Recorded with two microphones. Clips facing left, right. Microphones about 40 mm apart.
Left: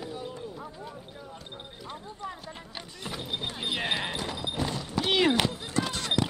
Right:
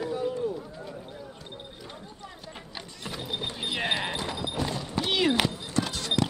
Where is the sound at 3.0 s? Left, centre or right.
Centre.